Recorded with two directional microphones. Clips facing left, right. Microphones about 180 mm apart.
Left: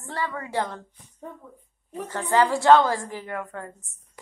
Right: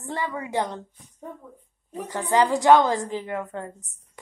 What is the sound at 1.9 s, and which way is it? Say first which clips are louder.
A woman's voice: even; 15° right (ahead or behind).